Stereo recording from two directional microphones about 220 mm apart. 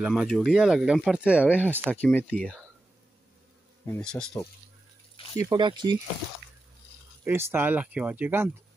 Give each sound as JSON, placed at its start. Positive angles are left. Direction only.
{"t": 0.0, "sound": "speech", "side_deg": 0}
{"t": 1.9, "sound": "speech", "side_deg": 5}
{"t": 3.8, "sound": "speech", "side_deg": 5}
{"t": 5.4, "sound": "speech", "side_deg": -20}
{"t": 7.2, "sound": "speech", "side_deg": -10}